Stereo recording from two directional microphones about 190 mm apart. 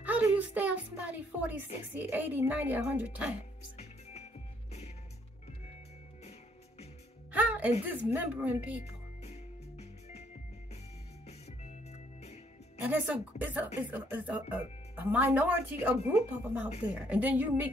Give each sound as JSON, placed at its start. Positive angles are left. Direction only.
{"t": 0.0, "sound": "a woman's voice", "side_deg": -10}
{"t": 3.7, "sound": "music", "side_deg": 35}
{"t": 7.3, "sound": "music", "side_deg": -5}
{"t": 7.8, "sound": "speech", "side_deg": -10}
{"t": 8.8, "sound": "music", "side_deg": 35}
{"t": 11.2, "sound": "music", "side_deg": 35}
{"t": 12.8, "sound": "speech", "side_deg": -10}